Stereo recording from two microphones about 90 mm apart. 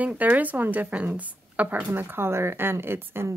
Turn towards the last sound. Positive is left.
turn(degrees=-25)  # may be behind; listen again after turning